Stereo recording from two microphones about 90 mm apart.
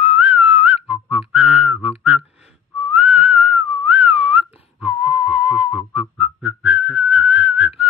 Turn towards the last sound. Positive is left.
turn(degrees=-10)  # may be behind; listen again after turning